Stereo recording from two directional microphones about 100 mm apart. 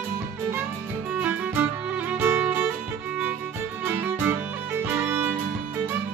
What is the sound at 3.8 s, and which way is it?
Music, 20° right (ahead or behind).